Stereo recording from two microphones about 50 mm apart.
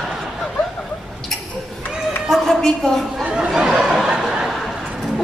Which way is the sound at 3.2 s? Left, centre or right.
Centre.